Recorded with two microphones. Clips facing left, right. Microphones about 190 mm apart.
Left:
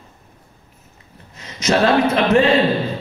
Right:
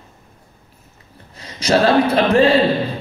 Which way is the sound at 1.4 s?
35° right (ahead or behind).